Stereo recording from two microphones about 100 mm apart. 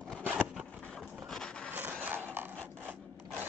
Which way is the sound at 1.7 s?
20° right (ahead or behind).